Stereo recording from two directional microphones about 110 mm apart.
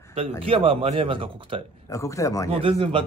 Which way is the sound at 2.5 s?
55° right (ahead or behind).